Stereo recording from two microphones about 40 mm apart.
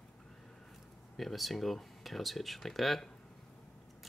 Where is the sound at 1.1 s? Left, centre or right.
Centre.